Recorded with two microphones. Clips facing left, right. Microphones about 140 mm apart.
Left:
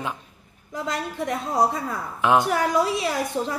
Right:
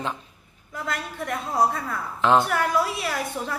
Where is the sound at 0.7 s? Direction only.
25° left (ahead or behind).